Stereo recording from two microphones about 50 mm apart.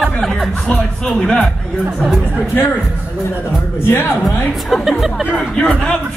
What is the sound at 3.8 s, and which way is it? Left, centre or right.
Speech, left.